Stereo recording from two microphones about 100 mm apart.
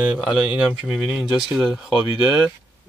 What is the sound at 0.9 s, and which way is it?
Speech, 5° left (ahead or behind).